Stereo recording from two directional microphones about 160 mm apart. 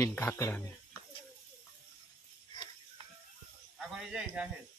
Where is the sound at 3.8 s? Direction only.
5° right (ahead or behind).